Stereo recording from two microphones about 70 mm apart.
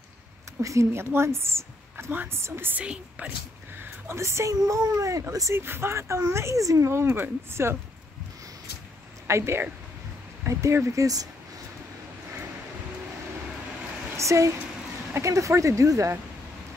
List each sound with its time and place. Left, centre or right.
0.6 s a woman's voice: right
2.8 s a woman's voice: centre
3.8 s speech: right
4.6 s speech: right
5.5 s a woman's voice: right
9.3 s a woman's voice: right
14.1 s speech: right